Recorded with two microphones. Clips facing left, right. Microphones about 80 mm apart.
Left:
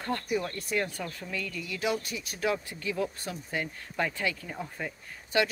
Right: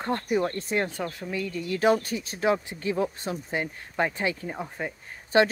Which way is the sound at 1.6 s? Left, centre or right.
Right.